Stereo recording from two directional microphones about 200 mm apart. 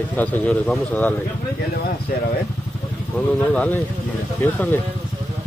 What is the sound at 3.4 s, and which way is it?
A man's voice, 5° left (ahead or behind).